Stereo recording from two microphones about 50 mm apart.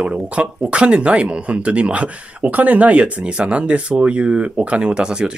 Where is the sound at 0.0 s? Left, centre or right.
Right.